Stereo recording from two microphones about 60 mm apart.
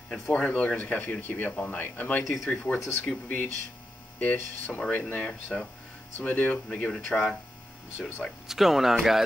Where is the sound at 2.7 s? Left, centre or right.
Left.